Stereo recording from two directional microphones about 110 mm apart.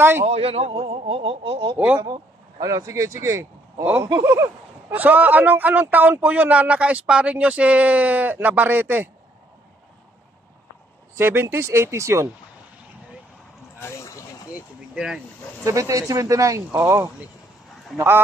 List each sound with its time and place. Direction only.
0.2 s a man's voice: 65° right (ahead or behind)
2.6 s speech: 30° right (ahead or behind)
11.1 s speech: 20° right (ahead or behind)
13.7 s a sound: 25° left (ahead or behind)
14.5 s a sound: 5° right (ahead or behind)
15.6 s speech: 30° right (ahead or behind)